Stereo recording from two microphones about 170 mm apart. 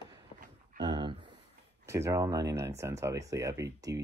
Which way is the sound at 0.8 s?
30° right (ahead or behind).